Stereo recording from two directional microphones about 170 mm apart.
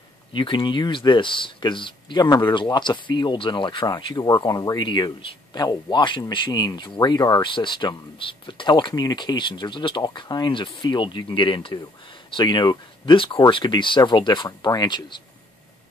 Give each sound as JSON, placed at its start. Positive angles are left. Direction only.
{"t": 0.3, "sound": "speech", "side_deg": 30}